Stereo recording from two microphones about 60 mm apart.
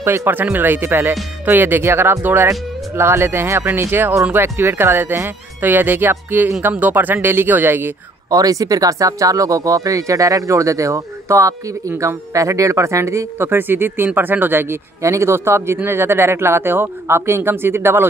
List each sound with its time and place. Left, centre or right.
0.0 s speech: right
8.3 s speech: right
15.0 s speech: right